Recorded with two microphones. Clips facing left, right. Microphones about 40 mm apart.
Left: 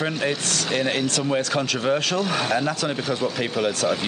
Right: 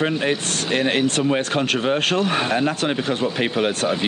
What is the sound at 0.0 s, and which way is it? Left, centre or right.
Speech, right.